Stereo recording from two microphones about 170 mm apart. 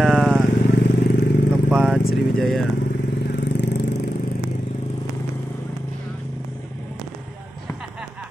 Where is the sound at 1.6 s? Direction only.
5° right (ahead or behind).